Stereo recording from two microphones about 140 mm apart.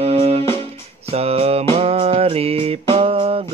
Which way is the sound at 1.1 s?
45° right (ahead or behind).